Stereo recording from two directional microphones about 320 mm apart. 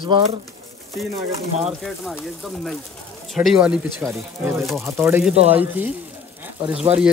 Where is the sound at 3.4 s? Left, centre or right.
Centre.